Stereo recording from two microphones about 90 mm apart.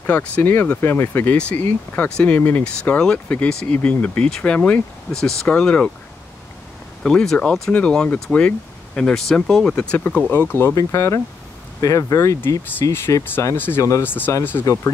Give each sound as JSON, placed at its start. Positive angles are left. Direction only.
{"t": 0.0, "sound": "speech", "side_deg": 20}
{"t": 7.0, "sound": "speech", "side_deg": 5}
{"t": 13.6, "sound": "speech", "side_deg": 25}
{"t": 14.7, "sound": "speech", "side_deg": 35}